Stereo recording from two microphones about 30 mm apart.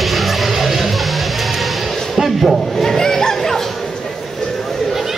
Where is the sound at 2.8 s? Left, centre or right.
Centre.